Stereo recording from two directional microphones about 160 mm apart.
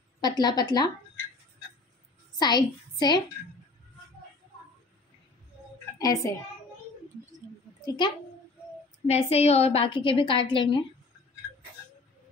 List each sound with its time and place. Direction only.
0.2 s speech: 25° left (ahead or behind)
2.3 s a woman's voice: 25° left (ahead or behind)
5.9 s a child's voice: 20° left (ahead or behind)
8.0 s speech: 30° left (ahead or behind)
9.0 s a woman's voice: 40° left (ahead or behind)